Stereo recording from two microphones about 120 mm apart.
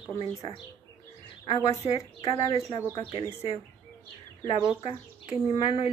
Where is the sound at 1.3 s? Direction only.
50° left (ahead or behind).